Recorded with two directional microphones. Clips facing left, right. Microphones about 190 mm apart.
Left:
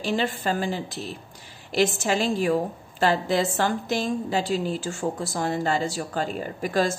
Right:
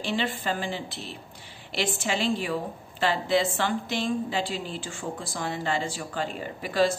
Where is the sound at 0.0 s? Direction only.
45° left (ahead or behind).